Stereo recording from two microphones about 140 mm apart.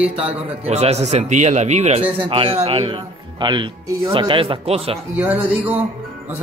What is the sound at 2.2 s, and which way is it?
A man's voice, 40° right (ahead or behind).